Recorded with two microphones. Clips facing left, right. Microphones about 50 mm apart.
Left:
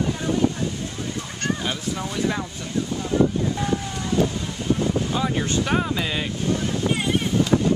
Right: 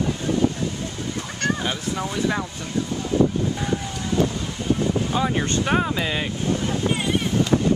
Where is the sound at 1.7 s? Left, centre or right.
Centre.